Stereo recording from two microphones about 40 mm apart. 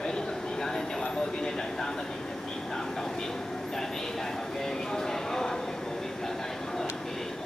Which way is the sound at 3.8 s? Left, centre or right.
Centre.